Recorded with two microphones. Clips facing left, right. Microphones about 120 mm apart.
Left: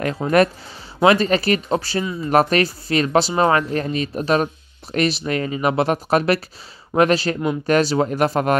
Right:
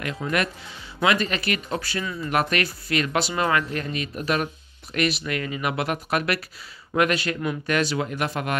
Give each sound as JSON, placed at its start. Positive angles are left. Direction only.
{"t": 0.0, "sound": "speech", "side_deg": 40}